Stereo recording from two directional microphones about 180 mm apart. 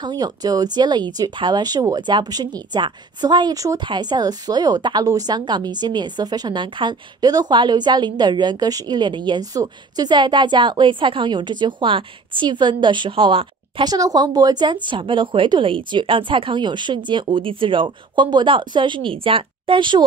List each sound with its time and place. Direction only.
0.0 s speech: 20° right (ahead or behind)